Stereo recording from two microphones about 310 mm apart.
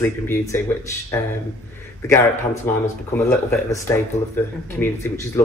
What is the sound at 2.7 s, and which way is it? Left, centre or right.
Speech, centre.